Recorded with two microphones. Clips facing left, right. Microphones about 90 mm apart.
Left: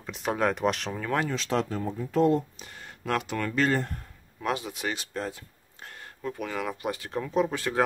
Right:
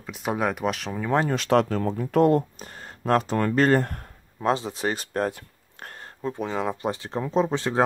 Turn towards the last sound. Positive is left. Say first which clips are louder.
# right 3 dB
turn(degrees=-25)  # may be behind; listen again after turning